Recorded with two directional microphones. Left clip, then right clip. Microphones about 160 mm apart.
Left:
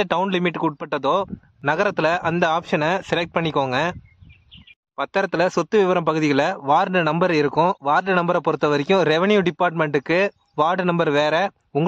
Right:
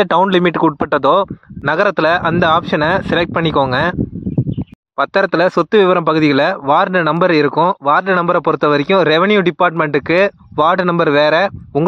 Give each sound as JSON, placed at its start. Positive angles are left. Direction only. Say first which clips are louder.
{"t": 0.3, "sound": "speech", "louder": "right 9 dB", "side_deg": -40}
{"t": 1.7, "sound": "speech", "louder": "right 7 dB", "side_deg": -25}
{"t": 4.9, "sound": "speech", "louder": "right 8 dB", "side_deg": -35}